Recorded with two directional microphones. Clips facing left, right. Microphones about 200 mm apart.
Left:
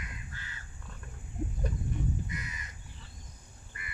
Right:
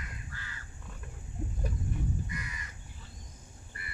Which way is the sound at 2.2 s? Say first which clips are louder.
Even; 20° left (ahead or behind).